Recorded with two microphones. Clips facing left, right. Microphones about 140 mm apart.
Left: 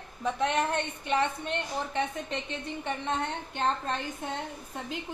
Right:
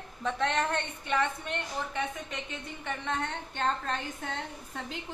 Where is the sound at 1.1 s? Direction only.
25° left (ahead or behind).